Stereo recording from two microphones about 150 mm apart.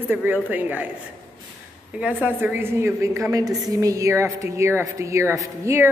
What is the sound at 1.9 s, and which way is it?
A woman's voice, 10° right (ahead or behind).